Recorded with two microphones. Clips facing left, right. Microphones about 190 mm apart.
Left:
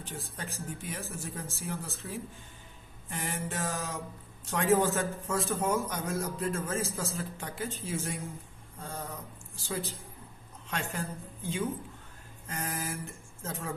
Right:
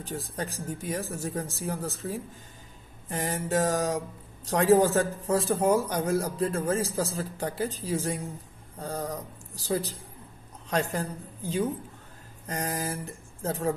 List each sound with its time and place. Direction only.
0.7 s a man's voice: 40° right (ahead or behind)